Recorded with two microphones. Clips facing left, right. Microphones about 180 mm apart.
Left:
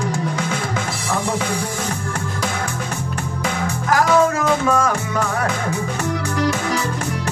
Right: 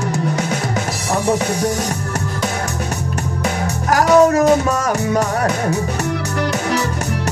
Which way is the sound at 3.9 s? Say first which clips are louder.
Right 5 dB; 40° right (ahead or behind).